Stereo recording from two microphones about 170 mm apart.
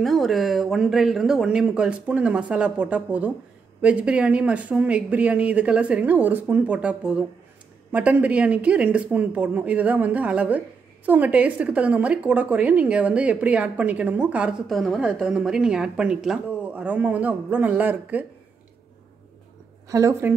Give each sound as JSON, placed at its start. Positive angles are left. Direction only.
{"t": 0.0, "sound": "speech", "side_deg": 0}
{"t": 19.9, "sound": "speech", "side_deg": -20}